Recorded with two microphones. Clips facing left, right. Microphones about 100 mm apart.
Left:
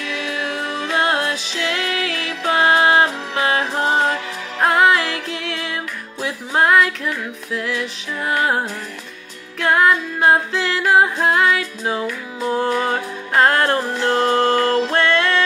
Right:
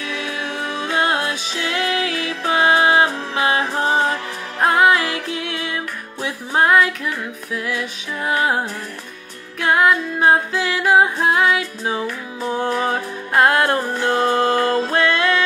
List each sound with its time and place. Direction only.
0.1 s music: 20° right (ahead or behind)
6.2 s music: 15° right (ahead or behind)